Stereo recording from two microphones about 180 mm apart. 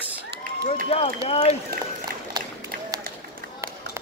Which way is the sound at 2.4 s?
20° right (ahead or behind).